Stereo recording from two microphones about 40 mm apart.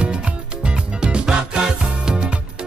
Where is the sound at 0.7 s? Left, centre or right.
Right.